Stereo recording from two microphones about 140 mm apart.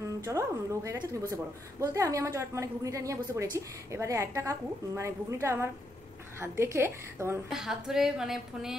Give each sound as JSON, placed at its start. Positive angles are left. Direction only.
{"t": 0.0, "sound": "a woman's voice", "side_deg": -20}
{"t": 7.4, "sound": "a woman's voice", "side_deg": -5}